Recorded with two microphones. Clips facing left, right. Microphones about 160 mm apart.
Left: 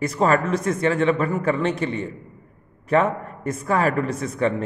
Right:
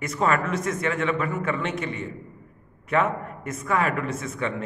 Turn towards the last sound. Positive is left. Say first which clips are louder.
# left 6 dB
turn(degrees=35)  # may be behind; listen again after turning